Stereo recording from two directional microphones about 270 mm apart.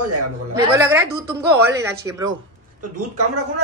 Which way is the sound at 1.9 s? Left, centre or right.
Centre.